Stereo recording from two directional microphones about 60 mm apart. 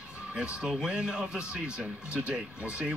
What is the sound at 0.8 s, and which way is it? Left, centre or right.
Speech, centre.